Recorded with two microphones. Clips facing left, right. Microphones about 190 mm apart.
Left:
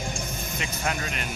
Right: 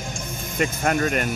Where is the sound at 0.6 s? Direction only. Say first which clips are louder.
Right 10 dB; 50° right (ahead or behind).